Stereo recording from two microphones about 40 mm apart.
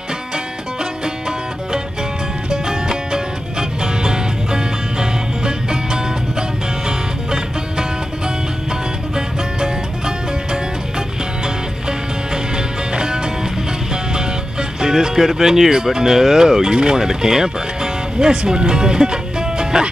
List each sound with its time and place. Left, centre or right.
2.5 s music: centre
9.1 s music: centre
12.5 s music: centre
14.1 s speech: centre